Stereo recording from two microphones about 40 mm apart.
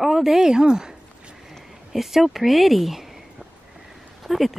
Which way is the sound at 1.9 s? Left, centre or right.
Centre.